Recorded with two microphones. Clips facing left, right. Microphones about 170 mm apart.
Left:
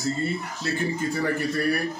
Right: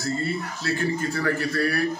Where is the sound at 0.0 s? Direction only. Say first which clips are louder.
Even; 20° left (ahead or behind).